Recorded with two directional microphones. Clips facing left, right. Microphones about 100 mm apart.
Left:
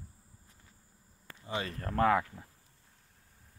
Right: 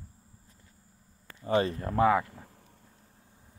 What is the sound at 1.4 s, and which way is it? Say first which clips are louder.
Speech: right 11 dB; 45° right (ahead or behind).